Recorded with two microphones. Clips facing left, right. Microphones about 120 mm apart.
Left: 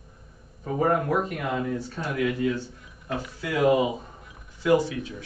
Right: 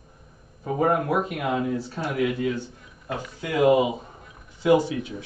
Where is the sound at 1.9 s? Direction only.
25° right (ahead or behind).